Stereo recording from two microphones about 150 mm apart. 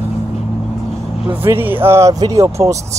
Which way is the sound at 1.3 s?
15° right (ahead or behind).